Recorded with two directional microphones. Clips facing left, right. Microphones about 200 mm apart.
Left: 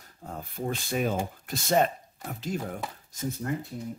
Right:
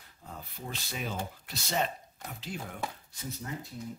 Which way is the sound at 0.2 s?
50° left (ahead or behind).